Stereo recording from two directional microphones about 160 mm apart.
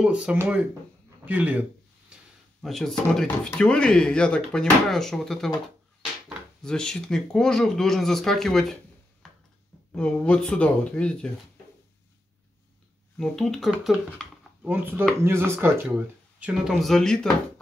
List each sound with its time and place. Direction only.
0.0 s speech: 5° right (ahead or behind)
1.2 s a sound: 10° right (ahead or behind)
2.6 s speech: centre (ahead or behind)
9.2 s a sound: centre (ahead or behind)
9.9 s speech: 5° left (ahead or behind)
13.2 s speech: centre (ahead or behind); by 15.7 s 15° right (ahead or behind)
16.3 s speech: 5° right (ahead or behind)